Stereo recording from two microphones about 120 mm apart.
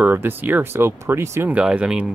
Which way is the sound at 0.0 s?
15° right (ahead or behind).